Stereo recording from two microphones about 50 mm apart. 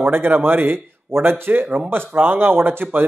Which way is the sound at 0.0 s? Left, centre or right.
Right.